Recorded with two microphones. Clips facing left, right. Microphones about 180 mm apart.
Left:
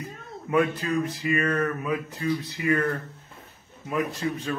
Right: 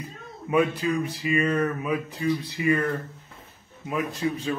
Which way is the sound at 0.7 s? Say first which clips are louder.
Right 1 dB; 15° right (ahead or behind).